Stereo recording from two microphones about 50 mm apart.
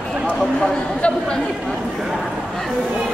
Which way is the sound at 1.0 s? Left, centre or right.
Centre.